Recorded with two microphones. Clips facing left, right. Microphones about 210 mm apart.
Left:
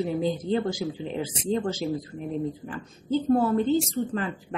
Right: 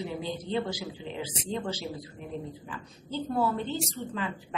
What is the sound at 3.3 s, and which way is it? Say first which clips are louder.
Speech: left 7 dB; 45° left (ahead or behind).